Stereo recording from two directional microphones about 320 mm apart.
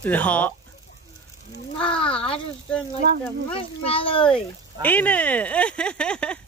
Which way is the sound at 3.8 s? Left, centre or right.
Centre.